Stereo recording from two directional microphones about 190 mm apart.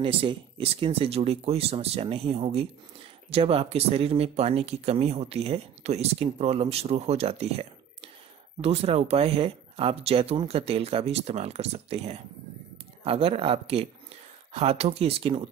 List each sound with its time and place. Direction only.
0.0 s speech: 30° right (ahead or behind)